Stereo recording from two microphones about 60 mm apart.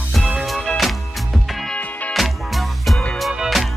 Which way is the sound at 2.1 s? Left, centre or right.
Centre.